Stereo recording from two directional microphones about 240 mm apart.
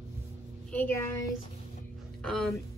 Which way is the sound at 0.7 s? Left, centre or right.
Centre.